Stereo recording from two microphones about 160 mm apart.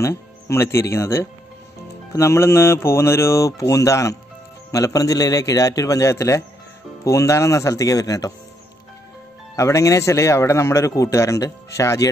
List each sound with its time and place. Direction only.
0.0 s a man's voice: 15° left (ahead or behind)
9.6 s a man's voice: 20° left (ahead or behind)